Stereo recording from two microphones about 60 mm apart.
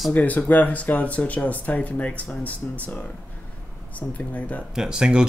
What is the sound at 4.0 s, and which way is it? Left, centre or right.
Speech, left.